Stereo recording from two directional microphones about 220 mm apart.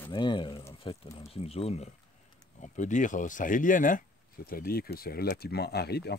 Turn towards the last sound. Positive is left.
turn(degrees=45)  # may be behind; listen again after turning